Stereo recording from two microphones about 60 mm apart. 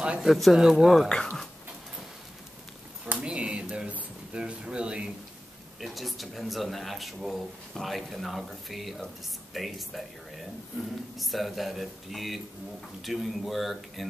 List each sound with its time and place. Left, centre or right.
0.0 s a sound: centre
0.3 s speech: centre
1.0 s speech: centre
3.2 s a sound: centre
5.8 s speech: centre
11.1 s speech: centre